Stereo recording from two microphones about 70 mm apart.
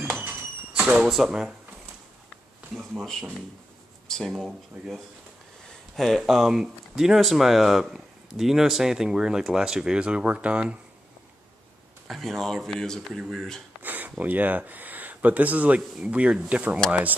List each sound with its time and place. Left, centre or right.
0.2 s a sound: centre
1.0 s speech: centre
4.3 s speech: centre
12.1 s speech: centre
13.8 s speech: right